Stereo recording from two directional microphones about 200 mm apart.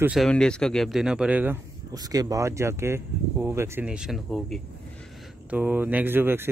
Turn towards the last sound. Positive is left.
turn(degrees=-10)  # may be behind; listen again after turning